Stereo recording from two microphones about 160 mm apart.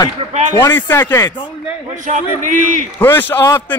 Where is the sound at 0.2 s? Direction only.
35° right (ahead or behind).